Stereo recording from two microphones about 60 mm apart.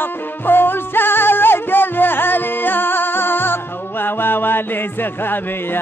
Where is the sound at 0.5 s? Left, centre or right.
Left.